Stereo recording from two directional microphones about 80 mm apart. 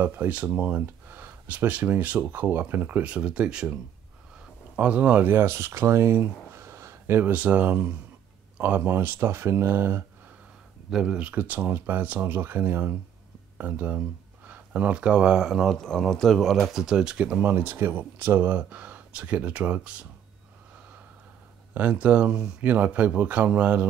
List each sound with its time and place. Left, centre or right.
0.0 s speech: right
10.9 s speech: centre
17.4 s speech: right
21.7 s speech: centre